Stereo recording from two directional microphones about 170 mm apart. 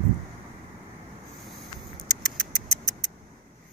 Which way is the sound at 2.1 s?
Centre (ahead or behind).